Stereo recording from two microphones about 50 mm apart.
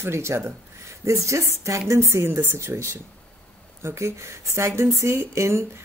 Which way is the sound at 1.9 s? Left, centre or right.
Right.